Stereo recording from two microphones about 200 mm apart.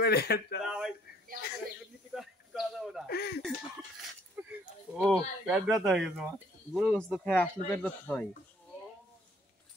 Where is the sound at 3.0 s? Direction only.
50° left (ahead or behind).